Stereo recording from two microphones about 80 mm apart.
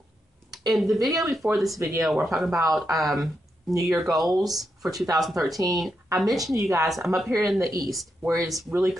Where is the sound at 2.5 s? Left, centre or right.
Right.